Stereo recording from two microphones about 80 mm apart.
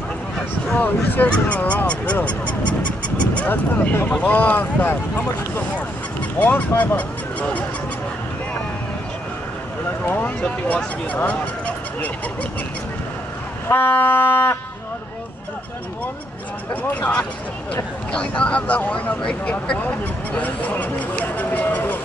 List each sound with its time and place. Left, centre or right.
0.7 s speech: left
3.3 s speech: centre
6.4 s speech: left
10.0 s speech: left
13.7 s speech: left
16.9 s speech: centre
18.2 s speech: centre
20.3 s a sound: centre